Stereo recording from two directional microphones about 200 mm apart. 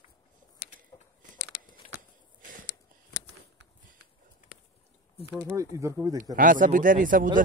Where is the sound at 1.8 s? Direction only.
35° left (ahead or behind).